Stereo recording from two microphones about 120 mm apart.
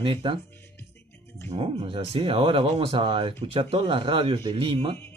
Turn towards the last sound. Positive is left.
turn(degrees=-45)  # may be behind; listen again after turning